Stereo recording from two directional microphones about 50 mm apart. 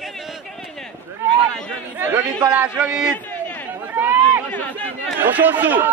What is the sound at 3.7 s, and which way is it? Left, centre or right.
Chatter, right.